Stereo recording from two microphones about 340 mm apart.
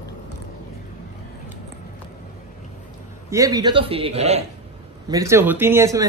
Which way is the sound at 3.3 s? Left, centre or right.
Centre.